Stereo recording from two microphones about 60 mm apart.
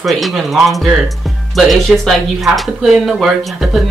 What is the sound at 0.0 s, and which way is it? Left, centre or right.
Speech, centre.